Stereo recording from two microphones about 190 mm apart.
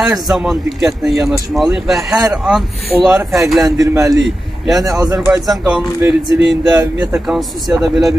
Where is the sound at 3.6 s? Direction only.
20° right (ahead or behind).